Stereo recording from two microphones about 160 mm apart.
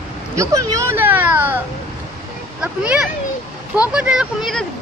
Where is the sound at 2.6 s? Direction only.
5° right (ahead or behind).